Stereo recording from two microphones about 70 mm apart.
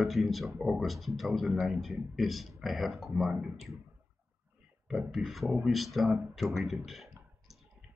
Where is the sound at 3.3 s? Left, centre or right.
Right.